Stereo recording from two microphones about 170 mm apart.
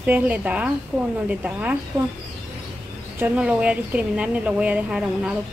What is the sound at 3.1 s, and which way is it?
Speech, 10° right (ahead or behind).